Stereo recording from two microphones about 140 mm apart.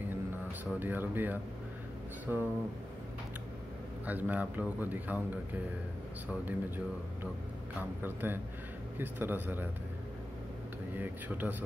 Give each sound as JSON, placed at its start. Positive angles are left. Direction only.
{"t": 0.7, "sound": "a man's voice", "side_deg": -15}
{"t": 4.0, "sound": "a man's voice", "side_deg": -10}
{"t": 8.0, "sound": "a man's voice", "side_deg": -15}
{"t": 11.0, "sound": "a man's voice", "side_deg": -15}